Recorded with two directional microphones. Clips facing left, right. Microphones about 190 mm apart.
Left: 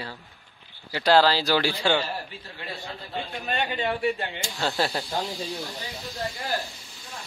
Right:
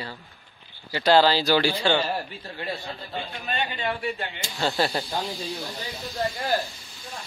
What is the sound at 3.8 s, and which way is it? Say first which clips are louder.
Speech: left 3 dB; 20° left (ahead or behind).